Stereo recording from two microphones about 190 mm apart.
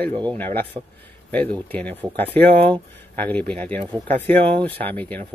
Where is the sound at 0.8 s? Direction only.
30° right (ahead or behind).